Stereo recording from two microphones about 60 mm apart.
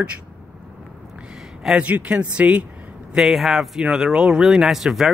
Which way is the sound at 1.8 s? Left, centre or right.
Right.